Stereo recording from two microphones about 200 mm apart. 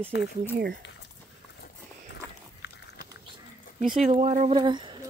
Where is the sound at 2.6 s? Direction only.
60° left (ahead or behind).